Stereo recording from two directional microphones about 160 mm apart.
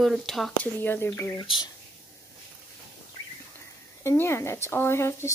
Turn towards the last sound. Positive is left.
turn(degrees=15)  # may be behind; listen again after turning